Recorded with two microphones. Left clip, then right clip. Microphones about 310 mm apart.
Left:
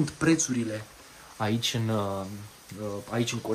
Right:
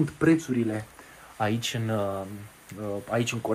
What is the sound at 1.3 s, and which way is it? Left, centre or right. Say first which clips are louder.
Speech: right 1 dB; centre.